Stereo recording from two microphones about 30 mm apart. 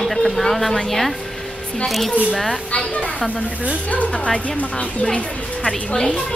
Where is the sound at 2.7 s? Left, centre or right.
Left.